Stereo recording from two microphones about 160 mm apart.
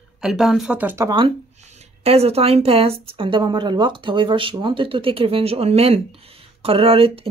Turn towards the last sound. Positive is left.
turn(degrees=-35)  # may be behind; listen again after turning